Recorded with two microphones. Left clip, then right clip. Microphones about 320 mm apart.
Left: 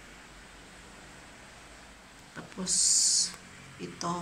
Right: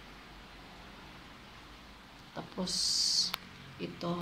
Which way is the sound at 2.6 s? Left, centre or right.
Centre.